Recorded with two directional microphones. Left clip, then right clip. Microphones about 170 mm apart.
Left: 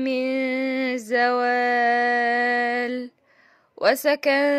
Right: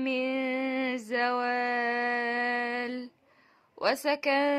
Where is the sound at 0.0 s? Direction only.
25° left (ahead or behind).